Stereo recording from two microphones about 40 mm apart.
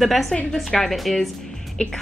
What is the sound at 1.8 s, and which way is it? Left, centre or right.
Speech, left.